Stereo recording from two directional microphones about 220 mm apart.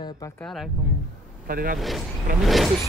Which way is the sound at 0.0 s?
20° left (ahead or behind).